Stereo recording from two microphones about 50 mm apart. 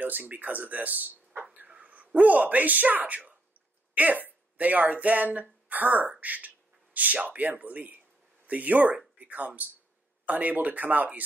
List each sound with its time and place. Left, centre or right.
0.0 s speech: right